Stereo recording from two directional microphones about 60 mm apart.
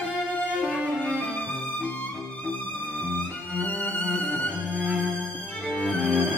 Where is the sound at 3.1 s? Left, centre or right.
Left.